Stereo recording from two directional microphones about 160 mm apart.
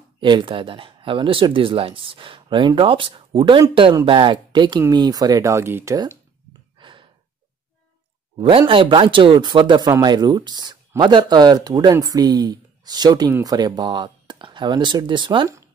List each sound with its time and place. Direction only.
0.2 s speech: 30° right (ahead or behind)
6.8 s gasp: 30° right (ahead or behind)
8.4 s speech: 35° right (ahead or behind)